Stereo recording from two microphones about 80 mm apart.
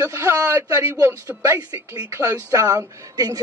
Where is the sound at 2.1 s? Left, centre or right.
Right.